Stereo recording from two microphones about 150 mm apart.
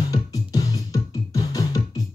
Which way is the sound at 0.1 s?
25° left (ahead or behind).